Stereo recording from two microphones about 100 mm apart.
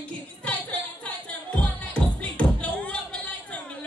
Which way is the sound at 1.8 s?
10° left (ahead or behind).